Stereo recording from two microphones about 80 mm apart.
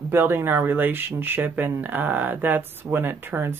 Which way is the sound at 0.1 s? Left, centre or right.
Right.